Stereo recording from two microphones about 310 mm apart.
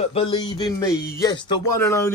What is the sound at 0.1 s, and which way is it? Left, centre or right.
Speech, centre.